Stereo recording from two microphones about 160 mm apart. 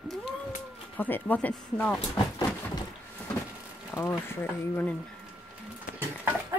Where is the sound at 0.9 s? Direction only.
10° left (ahead or behind).